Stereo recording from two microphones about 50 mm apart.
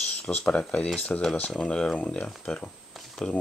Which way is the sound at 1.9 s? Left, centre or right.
Left.